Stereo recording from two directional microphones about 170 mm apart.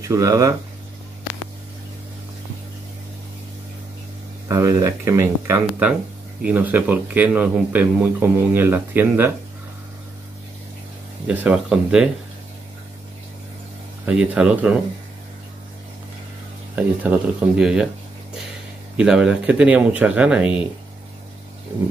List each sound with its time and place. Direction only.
0.1 s speech: 20° right (ahead or behind)
4.5 s a man's voice: 20° right (ahead or behind)
11.2 s speech: 5° right (ahead or behind)
14.0 s a man's voice: 10° right (ahead or behind)
17.1 s a man's voice: 10° right (ahead or behind)
18.9 s a man's voice: 5° right (ahead or behind)